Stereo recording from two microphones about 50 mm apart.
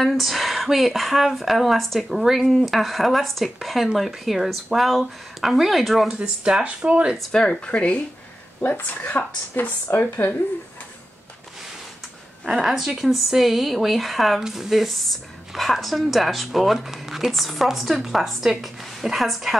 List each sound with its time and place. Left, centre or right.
0.0 s speech: centre
6.1 s speech: centre
7.3 s speech: left
8.5 s a woman's voice: left
12.4 s speech: centre